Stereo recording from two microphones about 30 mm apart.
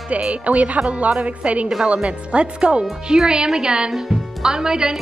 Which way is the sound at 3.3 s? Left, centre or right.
Right.